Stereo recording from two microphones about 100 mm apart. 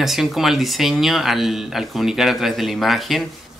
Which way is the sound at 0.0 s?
Centre (ahead or behind).